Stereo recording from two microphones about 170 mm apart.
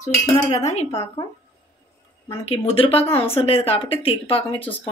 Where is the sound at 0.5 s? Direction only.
40° left (ahead or behind).